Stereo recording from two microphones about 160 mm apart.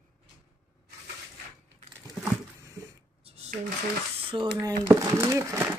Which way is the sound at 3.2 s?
40° right (ahead or behind).